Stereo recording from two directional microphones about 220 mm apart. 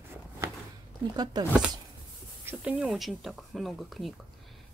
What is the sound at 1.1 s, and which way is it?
Speech, 20° right (ahead or behind).